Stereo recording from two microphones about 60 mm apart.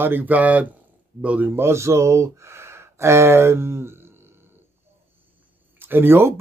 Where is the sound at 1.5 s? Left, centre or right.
Right.